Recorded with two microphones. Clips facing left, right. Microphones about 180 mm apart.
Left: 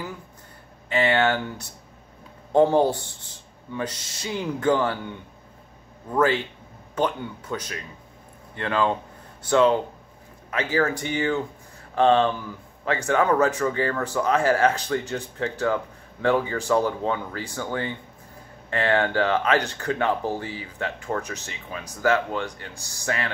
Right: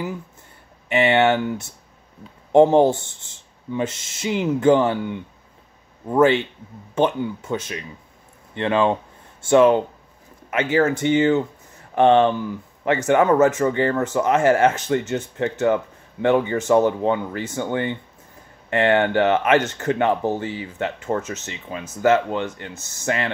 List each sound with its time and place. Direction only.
0.8 s speech: 20° right (ahead or behind)
6.1 s speech: 25° right (ahead or behind)
10.5 s speech: 25° right (ahead or behind)